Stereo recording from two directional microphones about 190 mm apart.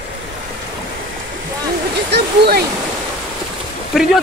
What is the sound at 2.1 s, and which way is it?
Speech, 55° right (ahead or behind).